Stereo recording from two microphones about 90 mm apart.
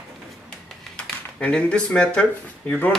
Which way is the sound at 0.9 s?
10° left (ahead or behind).